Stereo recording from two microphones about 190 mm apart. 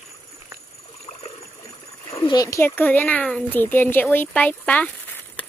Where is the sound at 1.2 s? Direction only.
35° left (ahead or behind).